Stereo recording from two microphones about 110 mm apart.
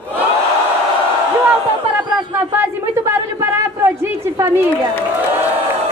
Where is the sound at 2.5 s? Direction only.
20° right (ahead or behind).